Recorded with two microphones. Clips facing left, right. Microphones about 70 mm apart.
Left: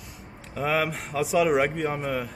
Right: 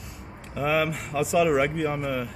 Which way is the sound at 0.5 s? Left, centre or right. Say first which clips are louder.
Right 1 dB; centre.